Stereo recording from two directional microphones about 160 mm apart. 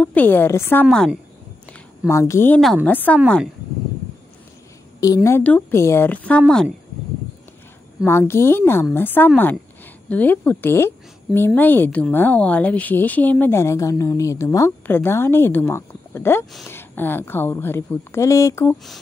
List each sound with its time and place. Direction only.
0.0 s speech: 10° left (ahead or behind)
1.7 s a sound: 15° left (ahead or behind)
2.6 s speech: 5° left (ahead or behind)
5.0 s speech: 20° left (ahead or behind)
8.0 s speech: 15° left (ahead or behind)